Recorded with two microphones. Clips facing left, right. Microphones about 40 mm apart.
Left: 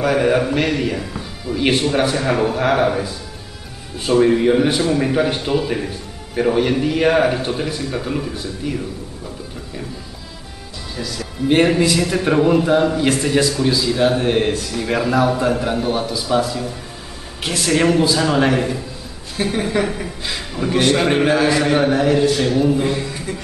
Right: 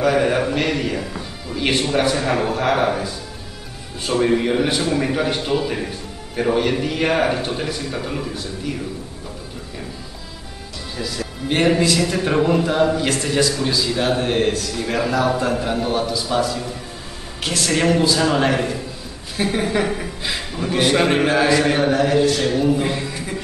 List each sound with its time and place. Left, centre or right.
0.0 s a man's voice: centre
4.6 s a man's voice: centre
5.0 s a man's voice: centre
11.0 s speech: centre
11.4 s a man's voice: centre
13.1 s a man's voice: centre
14.5 s a man's voice: centre
14.8 s a man's voice: centre
17.4 s a man's voice: centre
19.4 s a man's voice: centre